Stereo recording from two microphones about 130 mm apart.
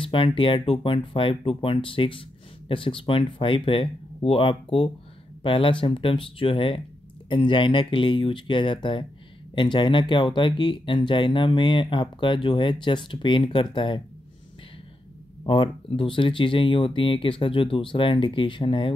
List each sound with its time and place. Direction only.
0.0 s speech: 45° left (ahead or behind)
15.4 s speech: 40° left (ahead or behind)